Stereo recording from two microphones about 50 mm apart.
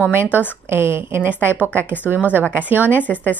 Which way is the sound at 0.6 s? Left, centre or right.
Right.